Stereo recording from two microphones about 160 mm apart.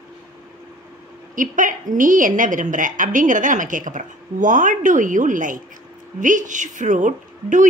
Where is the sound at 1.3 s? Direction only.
55° right (ahead or behind).